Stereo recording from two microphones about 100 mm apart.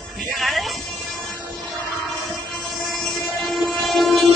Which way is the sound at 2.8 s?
Centre (ahead or behind).